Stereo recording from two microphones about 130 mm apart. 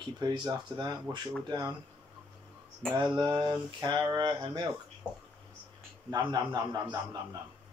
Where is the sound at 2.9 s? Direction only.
35° right (ahead or behind).